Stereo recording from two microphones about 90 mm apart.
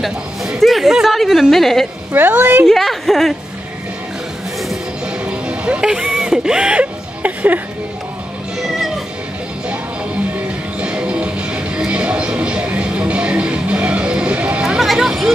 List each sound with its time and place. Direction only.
0.0 s a woman's voice: centre (ahead or behind)
2.1 s a woman's voice: 20° right (ahead or behind)
2.6 s a woman's voice: centre (ahead or behind)
5.2 s music: 15° right (ahead or behind)
8.6 s music: centre (ahead or behind)
10.8 s music: 10° right (ahead or behind)